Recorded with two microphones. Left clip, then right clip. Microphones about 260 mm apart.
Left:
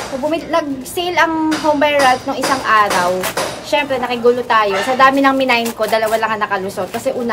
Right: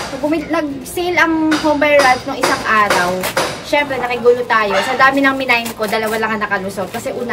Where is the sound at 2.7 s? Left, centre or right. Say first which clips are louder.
Left 1 dB; centre.